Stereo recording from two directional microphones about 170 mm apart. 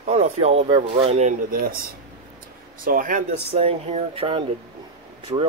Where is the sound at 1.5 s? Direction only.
55° right (ahead or behind).